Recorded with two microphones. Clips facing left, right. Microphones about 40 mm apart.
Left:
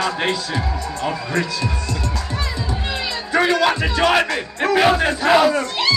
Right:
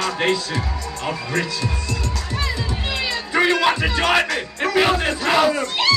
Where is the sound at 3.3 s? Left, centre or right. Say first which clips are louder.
Left 1 dB; centre.